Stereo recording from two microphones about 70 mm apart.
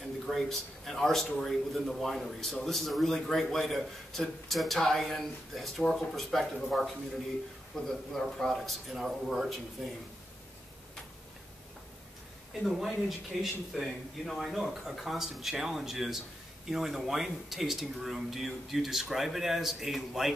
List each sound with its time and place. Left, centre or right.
0.3 s a man's voice: centre
12.6 s a man's voice: centre